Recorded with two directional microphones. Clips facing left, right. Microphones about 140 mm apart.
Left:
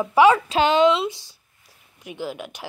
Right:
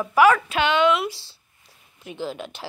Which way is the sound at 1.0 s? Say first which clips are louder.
Left 2 dB; 20° left (ahead or behind).